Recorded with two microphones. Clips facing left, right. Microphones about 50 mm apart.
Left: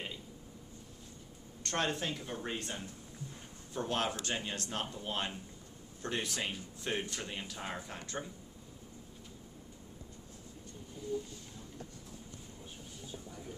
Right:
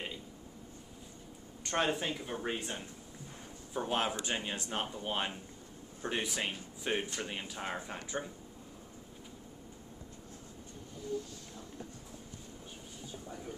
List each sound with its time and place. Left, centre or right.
1.6 s speech: centre